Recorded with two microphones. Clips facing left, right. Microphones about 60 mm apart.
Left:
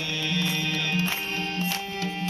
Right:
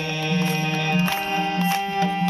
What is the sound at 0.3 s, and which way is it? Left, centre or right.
Music, right.